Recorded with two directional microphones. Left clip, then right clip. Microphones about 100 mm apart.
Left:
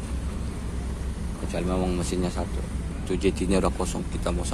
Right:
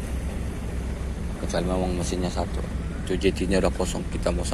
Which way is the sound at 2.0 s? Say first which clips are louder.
Right 1 dB; 35° left (ahead or behind).